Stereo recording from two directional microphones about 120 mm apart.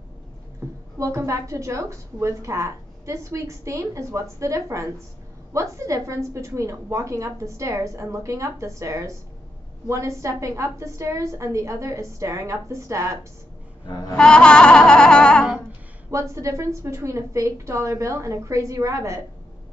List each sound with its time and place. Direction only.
0.9 s a woman's voice: 25° right (ahead or behind)
14.1 s a sound: 5° left (ahead or behind)
16.1 s a woman's voice: 25° right (ahead or behind)